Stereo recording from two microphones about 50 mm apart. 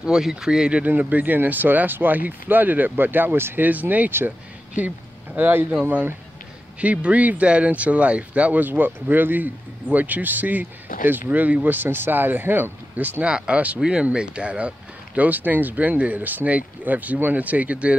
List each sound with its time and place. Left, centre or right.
0.0 s speech: centre
0.8 s speech: right
3.6 s speech: right
12.9 s speech: right
15.1 s speech: right